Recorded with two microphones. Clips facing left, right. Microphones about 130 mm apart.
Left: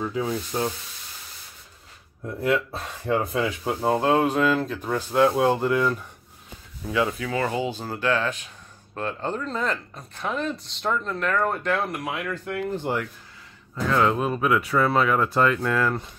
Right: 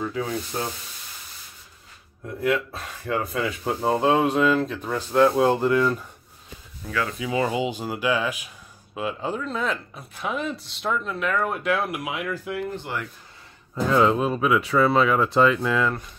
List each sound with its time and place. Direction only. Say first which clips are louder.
0.1 s sanding: left 1 dB; 15° left (ahead or behind)
2.4 s speech: even; 30° left (ahead or behind)
3.6 s speech: right 2 dB; centre (ahead or behind)
6.9 s speech: left 3 dB; 20° left (ahead or behind)
7.2 s speech: right 2 dB; 15° right (ahead or behind)
12.9 s speech: left 5 dB; 35° left (ahead or behind)
13.7 s speech: right 3 dB; 20° right (ahead or behind)
14.1 s speech: right 1 dB; centre (ahead or behind)